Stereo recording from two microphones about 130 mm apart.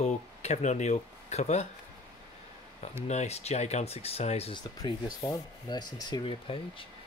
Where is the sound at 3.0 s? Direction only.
60° left (ahead or behind).